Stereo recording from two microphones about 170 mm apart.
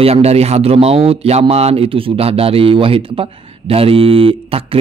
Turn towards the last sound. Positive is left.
turn(degrees=-35)  # may be behind; listen again after turning